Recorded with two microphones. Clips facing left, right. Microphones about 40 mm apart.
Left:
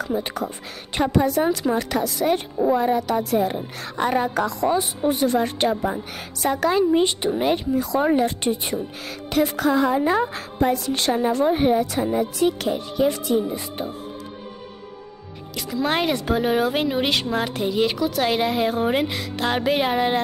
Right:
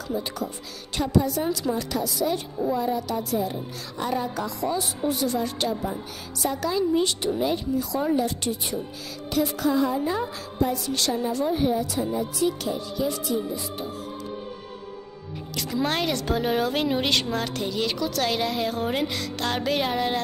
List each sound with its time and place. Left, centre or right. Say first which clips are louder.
0.0 s a woman's voice: left 4 dB; left
4.7 s a woman's voice: left 5 dB; left
7.0 s speech: left 4 dB; left
7.3 s speech: left 5 dB; left
9.3 s a woman's voice: left 4 dB; left
15.5 s speech: left 2 dB; centre
15.9 s speech: left 7 dB; left